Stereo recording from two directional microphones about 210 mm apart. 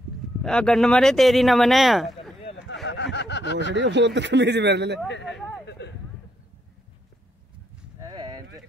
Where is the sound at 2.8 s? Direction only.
60° left (ahead or behind).